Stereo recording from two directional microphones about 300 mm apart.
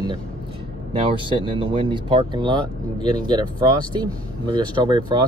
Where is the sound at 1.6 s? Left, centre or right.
Centre.